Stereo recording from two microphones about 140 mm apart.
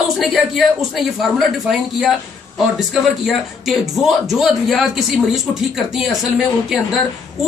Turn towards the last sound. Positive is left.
turn(degrees=-5)  # may be behind; listen again after turning